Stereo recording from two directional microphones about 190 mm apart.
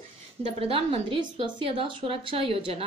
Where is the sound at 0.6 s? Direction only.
30° right (ahead or behind).